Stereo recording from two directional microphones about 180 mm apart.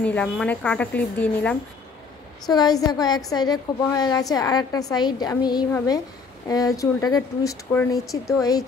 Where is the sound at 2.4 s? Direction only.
20° left (ahead or behind).